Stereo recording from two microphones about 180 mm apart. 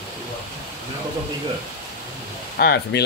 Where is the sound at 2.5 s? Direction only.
65° left (ahead or behind).